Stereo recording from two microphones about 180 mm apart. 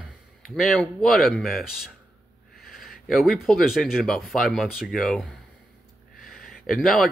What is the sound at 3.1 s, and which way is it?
Speech, centre (ahead or behind).